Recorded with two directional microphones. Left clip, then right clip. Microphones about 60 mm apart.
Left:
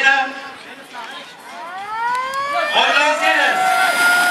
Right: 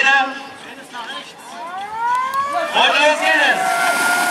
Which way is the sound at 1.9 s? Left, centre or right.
Centre.